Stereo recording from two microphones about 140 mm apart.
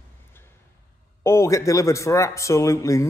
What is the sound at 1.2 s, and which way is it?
A man's voice, 20° left (ahead or behind).